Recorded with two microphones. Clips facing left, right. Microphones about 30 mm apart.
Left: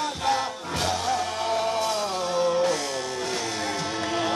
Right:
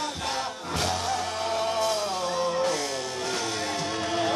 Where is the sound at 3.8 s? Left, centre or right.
Centre.